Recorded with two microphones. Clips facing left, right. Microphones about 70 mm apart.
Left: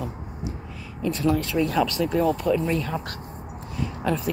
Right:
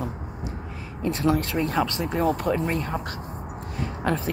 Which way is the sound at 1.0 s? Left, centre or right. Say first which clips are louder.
Even; right.